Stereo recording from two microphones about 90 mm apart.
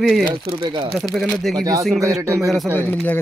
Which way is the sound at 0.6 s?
60° right (ahead or behind).